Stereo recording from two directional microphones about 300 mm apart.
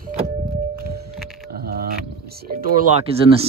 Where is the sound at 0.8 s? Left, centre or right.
Right.